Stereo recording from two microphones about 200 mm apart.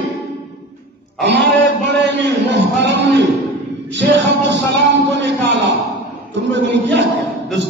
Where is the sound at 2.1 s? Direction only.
60° right (ahead or behind).